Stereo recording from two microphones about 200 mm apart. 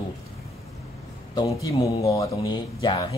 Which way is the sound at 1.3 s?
20° left (ahead or behind).